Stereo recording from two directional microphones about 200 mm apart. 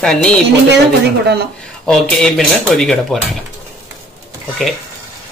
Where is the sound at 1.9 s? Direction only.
5° left (ahead or behind).